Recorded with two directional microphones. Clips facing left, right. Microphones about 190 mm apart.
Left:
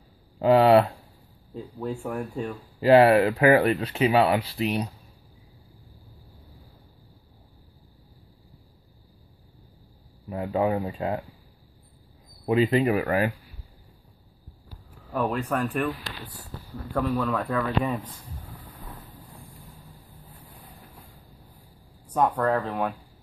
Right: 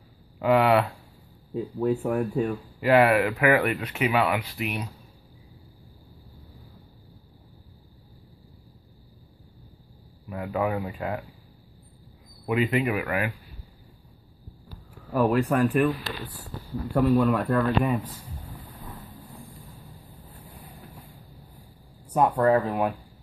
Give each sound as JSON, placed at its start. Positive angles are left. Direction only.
{"t": 0.4, "sound": "speech", "side_deg": 30}
{"t": 1.9, "sound": "speech", "side_deg": -10}
{"t": 2.8, "sound": "speech", "side_deg": 30}
{"t": 10.3, "sound": "speech", "side_deg": 30}
{"t": 12.4, "sound": "speech", "side_deg": 35}
{"t": 15.1, "sound": "speech", "side_deg": -5}
{"t": 16.9, "sound": "speech", "side_deg": -15}
{"t": 17.5, "sound": "speech", "side_deg": 0}
{"t": 22.1, "sound": "speech", "side_deg": -10}